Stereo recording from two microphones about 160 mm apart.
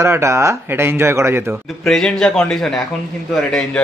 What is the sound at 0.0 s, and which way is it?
Speech, 15° right (ahead or behind).